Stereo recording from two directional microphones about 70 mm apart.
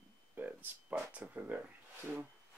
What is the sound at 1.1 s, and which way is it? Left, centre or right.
Speech, right.